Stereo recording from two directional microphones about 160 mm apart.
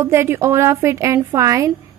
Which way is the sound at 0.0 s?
15° right (ahead or behind).